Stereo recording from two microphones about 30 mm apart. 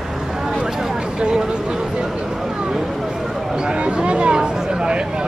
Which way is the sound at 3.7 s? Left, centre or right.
Right.